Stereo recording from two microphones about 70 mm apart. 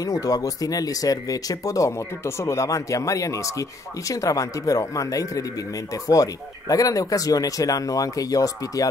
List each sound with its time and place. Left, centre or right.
0.0 s speech: left